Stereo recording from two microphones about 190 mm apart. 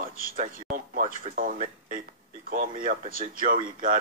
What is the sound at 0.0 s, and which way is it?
Speech, 45° right (ahead or behind).